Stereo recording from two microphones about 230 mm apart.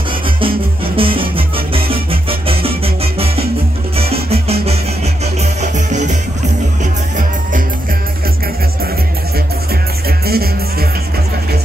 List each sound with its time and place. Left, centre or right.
0.4 s music: right
4.0 s music: right
10.0 s music: right